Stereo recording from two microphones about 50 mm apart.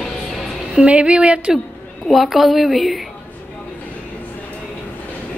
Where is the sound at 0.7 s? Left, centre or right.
Right.